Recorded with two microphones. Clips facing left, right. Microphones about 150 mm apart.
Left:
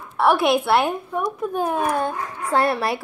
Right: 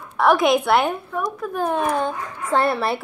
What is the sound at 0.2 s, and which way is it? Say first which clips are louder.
Speech: right 1 dB; 5° left (ahead or behind).